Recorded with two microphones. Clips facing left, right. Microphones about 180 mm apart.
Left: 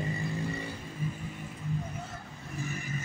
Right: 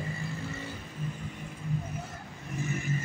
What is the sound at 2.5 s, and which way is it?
Vehicle, 20° right (ahead or behind).